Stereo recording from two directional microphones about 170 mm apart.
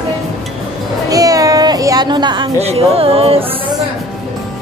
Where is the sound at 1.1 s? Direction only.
20° right (ahead or behind).